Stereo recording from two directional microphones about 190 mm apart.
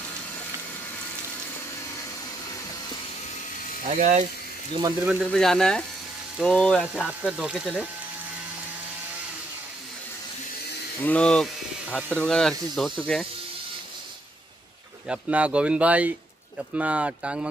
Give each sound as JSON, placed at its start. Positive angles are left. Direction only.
{"t": 4.0, "sound": "speech", "side_deg": -40}
{"t": 5.0, "sound": "speech", "side_deg": 0}
{"t": 11.0, "sound": "speech", "side_deg": 5}
{"t": 15.0, "sound": "speech", "side_deg": -5}